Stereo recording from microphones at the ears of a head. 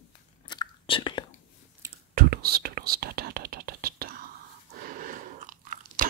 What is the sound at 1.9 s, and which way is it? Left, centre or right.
Whispering, right.